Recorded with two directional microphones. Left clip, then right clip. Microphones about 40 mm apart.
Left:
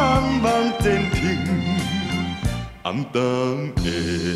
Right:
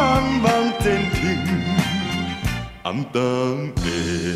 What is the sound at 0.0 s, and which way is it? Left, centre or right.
Music, left.